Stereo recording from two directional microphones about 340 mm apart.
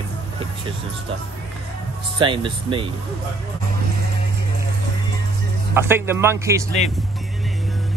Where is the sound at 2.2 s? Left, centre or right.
Centre.